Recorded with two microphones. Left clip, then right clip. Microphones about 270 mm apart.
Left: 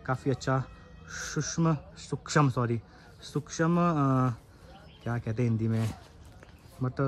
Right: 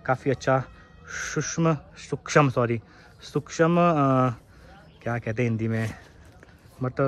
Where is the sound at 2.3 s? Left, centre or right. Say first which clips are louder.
Right 7 dB; centre.